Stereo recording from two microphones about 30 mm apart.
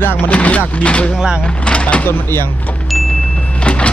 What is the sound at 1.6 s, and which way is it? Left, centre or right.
Vehicle, left.